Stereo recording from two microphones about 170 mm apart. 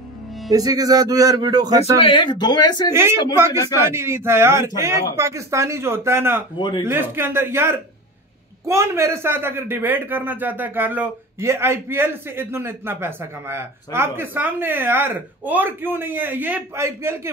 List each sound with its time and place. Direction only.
0.5 s speech: 20° right (ahead or behind)
2.0 s speech: 30° left (ahead or behind)
2.9 s speech: 15° right (ahead or behind)